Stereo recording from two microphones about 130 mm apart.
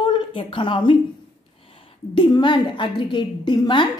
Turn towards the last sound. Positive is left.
turn(degrees=35)  # may be behind; listen again after turning